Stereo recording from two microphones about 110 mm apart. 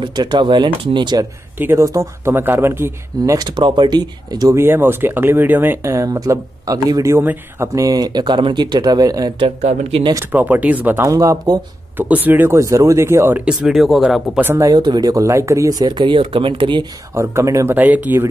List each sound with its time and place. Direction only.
0.0 s speech: 45° right (ahead or behind)
1.6 s speech: 25° right (ahead or behind)
3.3 s speech: 45° right (ahead or behind)
4.6 s speech: 20° right (ahead or behind); by 9.3 s 35° right (ahead or behind)
9.6 s speech: 90° right
10.3 s speech: 15° right (ahead or behind)
11.1 s speech: 30° right (ahead or behind)
12.0 s speech: 15° right (ahead or behind)
13.5 s speech: centre (ahead or behind)
14.4 s speech: 20° right (ahead or behind)
14.7 s speech: 40° right (ahead or behind)
17.1 s speech: 25° right (ahead or behind)
17.7 s speech: 15° right (ahead or behind)